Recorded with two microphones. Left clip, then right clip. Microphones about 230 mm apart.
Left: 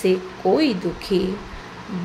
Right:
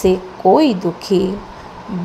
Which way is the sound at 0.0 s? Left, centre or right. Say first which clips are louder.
Right 6 dB; right.